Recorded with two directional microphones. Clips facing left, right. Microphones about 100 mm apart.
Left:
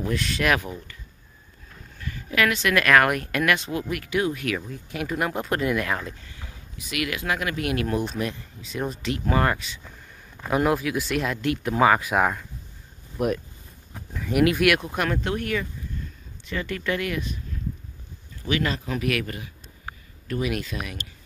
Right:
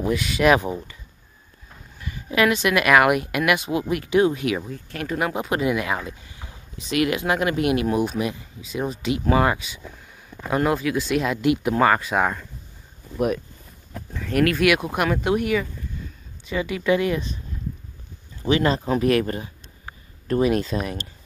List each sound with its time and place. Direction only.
0.0 s speech: 10° right (ahead or behind)
0.5 s speech: 25° right (ahead or behind)
2.0 s speech: 20° right (ahead or behind)
4.7 s speech: 5° left (ahead or behind)
6.3 s speech: 25° right (ahead or behind)
10.5 s speech: centre (ahead or behind)
11.4 s speech: 15° right (ahead or behind)
11.7 s speech: 5° left (ahead or behind)
14.1 s speech: 10° left (ahead or behind)
15.0 s speech: 10° right (ahead or behind)
16.0 s a sound: 5° right (ahead or behind)
16.4 s speech: 15° right (ahead or behind)
18.4 s speech: 30° right (ahead or behind)